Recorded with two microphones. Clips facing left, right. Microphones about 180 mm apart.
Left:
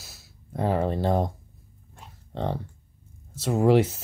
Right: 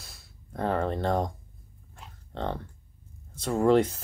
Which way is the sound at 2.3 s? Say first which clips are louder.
Left 3 dB; 5° left (ahead or behind).